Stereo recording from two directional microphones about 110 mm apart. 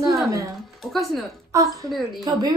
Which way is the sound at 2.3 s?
40° right (ahead or behind).